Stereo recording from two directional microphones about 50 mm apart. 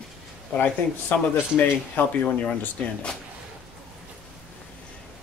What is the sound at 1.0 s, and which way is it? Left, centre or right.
Speech, left.